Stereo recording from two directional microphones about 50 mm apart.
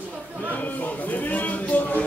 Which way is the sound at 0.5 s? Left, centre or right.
Left.